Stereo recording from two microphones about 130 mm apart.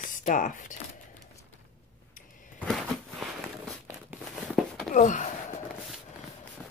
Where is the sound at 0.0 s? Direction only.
80° left.